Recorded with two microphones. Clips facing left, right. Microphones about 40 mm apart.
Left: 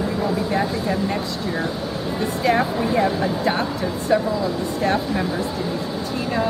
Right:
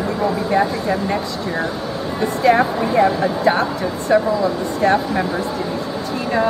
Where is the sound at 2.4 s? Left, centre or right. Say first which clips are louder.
Right 5 dB; centre.